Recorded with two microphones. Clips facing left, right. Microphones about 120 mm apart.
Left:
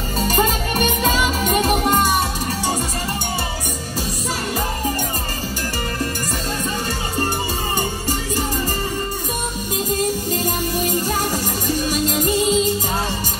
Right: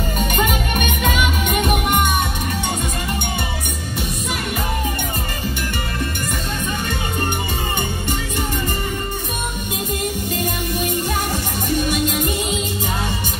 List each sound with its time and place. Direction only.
0.2 s music: 35° left (ahead or behind)
10.0 s music: 40° left (ahead or behind)